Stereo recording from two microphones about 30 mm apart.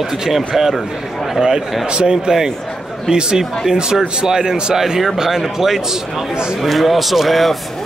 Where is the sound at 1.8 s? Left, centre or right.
Right.